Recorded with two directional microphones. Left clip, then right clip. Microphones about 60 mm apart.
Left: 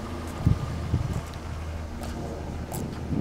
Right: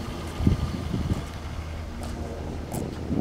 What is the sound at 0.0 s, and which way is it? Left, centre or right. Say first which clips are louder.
Vehicle: right 2 dB; centre.